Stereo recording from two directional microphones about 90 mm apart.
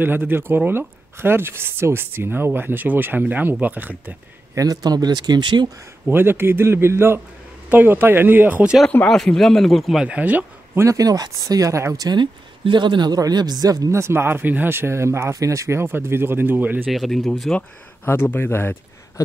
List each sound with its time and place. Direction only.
0.0 s speech: 25° right (ahead or behind)
4.6 s speech: 45° right (ahead or behind)
6.0 s speech: 25° right (ahead or behind)
9.0 s speech: 5° left (ahead or behind)
10.0 s speech: 15° right (ahead or behind)
11.0 s a man's voice: 45° right (ahead or behind)
12.2 s a man's voice: 60° right (ahead or behind); by 16.8 s 20° right (ahead or behind)
16.8 s speech: centre (ahead or behind)
18.0 s speech: 20° left (ahead or behind)